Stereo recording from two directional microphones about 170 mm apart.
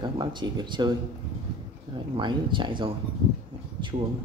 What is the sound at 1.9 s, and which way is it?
Speech, 30° right (ahead or behind).